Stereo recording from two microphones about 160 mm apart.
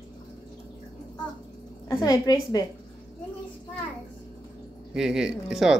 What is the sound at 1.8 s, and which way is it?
Speech, 25° left (ahead or behind).